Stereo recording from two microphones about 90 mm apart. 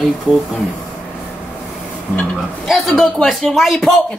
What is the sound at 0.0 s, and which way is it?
Speech, centre (ahead or behind).